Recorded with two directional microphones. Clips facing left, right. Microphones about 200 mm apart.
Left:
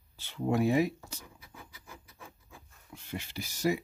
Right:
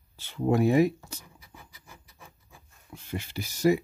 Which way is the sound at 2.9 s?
50° right (ahead or behind).